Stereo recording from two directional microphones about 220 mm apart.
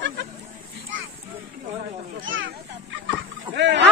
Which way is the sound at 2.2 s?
60° right (ahead or behind).